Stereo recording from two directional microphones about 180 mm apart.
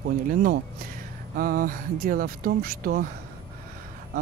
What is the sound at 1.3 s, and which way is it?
Speech, 50° right (ahead or behind).